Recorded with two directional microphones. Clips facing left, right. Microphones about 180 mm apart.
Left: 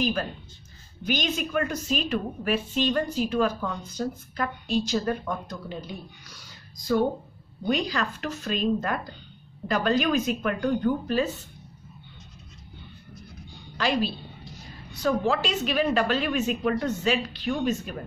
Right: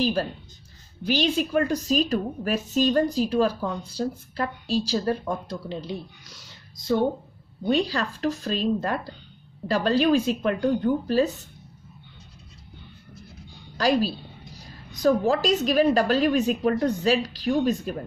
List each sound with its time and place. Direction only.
0.0 s a woman's voice: 30° right (ahead or behind)
13.7 s a woman's voice: 40° right (ahead or behind)